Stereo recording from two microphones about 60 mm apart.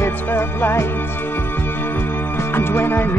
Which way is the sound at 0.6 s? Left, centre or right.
Left.